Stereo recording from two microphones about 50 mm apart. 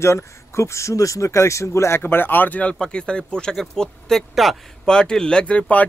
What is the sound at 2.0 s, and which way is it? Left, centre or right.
Speech, left.